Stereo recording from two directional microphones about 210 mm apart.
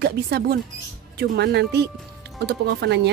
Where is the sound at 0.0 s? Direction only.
50° right (ahead or behind).